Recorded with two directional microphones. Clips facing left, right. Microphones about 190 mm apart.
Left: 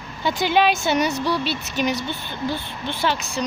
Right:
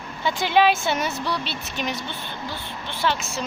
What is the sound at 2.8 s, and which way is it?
Speech, 15° left (ahead or behind).